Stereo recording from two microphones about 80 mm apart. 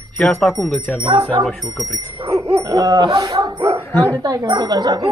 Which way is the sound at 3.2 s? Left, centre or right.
Right.